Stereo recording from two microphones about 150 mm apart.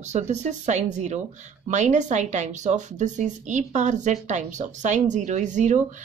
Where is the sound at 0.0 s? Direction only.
50° right (ahead or behind).